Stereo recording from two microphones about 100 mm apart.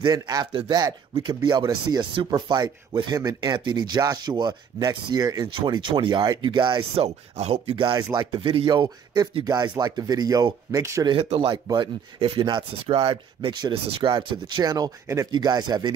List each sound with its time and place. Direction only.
0.0 s speech: 40° right (ahead or behind)
3.5 s speech: 50° right (ahead or behind)
5.7 s speech: 50° right (ahead or behind)
7.0 s speech: 90° right; by 7.9 s 75° right (ahead or behind)
7.9 s speech: 50° right (ahead or behind)
8.6 s speech: 45° right (ahead or behind)
11.1 s speech: 70° right (ahead or behind)
11.5 s speech: 45° right (ahead or behind)
12.9 s speech: 65° right (ahead or behind); by 13.7 s 50° right (ahead or behind)
13.8 s speech: 60° right (ahead or behind); by 15.9 s 45° right (ahead or behind)